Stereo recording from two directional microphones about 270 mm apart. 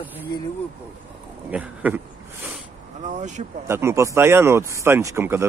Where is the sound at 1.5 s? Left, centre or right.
Centre.